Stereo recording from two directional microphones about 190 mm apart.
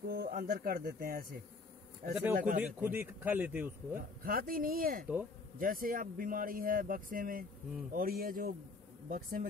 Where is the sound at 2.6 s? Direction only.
10° right (ahead or behind).